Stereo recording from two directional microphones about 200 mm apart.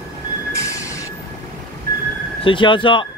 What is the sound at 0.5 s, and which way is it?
Train, 15° left (ahead or behind).